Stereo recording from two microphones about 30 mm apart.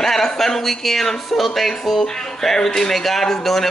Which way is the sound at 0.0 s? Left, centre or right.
Centre.